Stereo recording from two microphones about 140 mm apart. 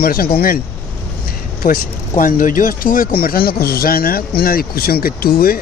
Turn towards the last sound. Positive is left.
turn(degrees=90)